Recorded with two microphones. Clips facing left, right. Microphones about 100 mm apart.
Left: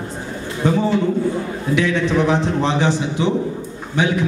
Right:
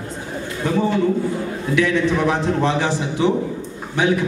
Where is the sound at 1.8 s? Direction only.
20° left (ahead or behind).